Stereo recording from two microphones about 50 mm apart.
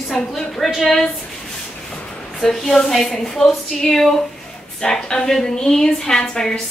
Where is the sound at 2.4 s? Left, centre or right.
Centre.